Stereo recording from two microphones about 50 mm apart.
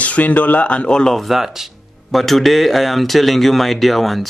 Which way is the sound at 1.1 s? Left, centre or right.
Centre.